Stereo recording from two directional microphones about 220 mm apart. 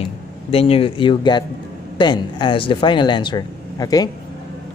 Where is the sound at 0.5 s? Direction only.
25° left (ahead or behind).